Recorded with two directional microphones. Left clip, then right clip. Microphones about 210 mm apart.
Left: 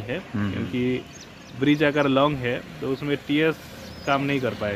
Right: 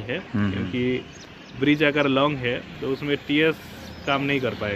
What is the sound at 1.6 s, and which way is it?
Speech, 35° left (ahead or behind).